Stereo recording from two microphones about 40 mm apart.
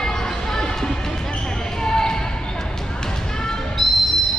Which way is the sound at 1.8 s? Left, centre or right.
Centre.